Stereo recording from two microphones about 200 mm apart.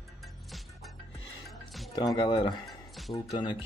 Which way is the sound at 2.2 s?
25° left (ahead or behind).